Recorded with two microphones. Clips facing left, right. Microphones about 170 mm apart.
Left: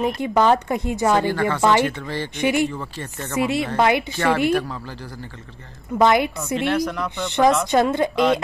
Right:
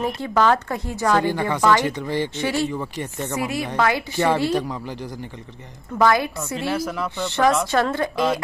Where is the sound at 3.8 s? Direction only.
20° left (ahead or behind).